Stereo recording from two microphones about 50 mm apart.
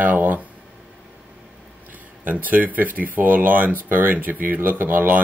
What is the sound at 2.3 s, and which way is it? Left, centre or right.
Speech, right.